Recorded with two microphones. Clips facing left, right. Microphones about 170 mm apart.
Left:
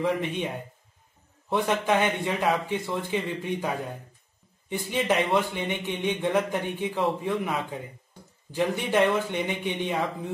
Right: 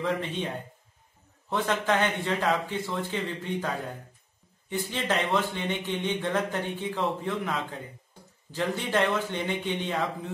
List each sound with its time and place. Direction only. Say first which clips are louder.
0.0 s speech: left 3 dB; 15° left (ahead or behind)
1.5 s speech: left 2 dB; 15° left (ahead or behind)